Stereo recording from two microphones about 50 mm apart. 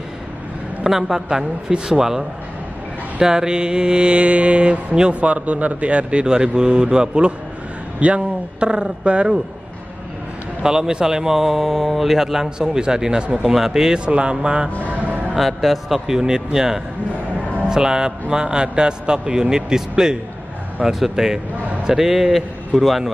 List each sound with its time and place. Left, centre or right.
0.8 s a man's voice: centre
3.2 s mantra: centre
8.0 s a man's voice: right
10.6 s a man's voice: centre
13.9 s mantra: right
14.9 s music: right
15.3 s speech: centre
16.1 s a man's voice: centre